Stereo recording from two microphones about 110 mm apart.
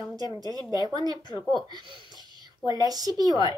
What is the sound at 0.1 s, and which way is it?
Speech, 35° right (ahead or behind).